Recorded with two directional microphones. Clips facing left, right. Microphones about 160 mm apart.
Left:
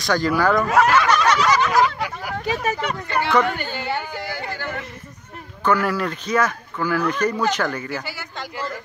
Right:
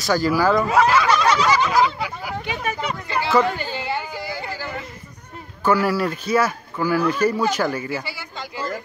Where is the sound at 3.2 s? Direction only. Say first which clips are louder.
Right 1 dB; 25° right (ahead or behind).